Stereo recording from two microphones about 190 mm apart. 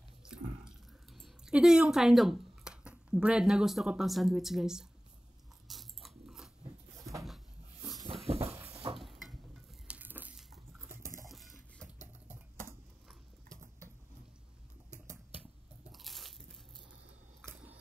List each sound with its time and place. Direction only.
0.2 s drip: 5° right (ahead or behind)
5.7 s biting: centre (ahead or behind)
7.0 s a sound: 15° right (ahead or behind)
7.2 s cupboard open or close: centre (ahead or behind)
8.3 s a sound: 30° right (ahead or behind)
8.6 s stir: 30° right (ahead or behind)
8.9 s a sound: centre (ahead or behind)
11.2 s bathtub: centre (ahead or behind)
15.9 s crunch: centre (ahead or behind)
17.5 s scissors: 10° right (ahead or behind)